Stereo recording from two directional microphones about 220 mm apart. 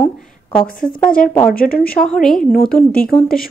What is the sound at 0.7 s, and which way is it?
Speech, 40° left (ahead or behind).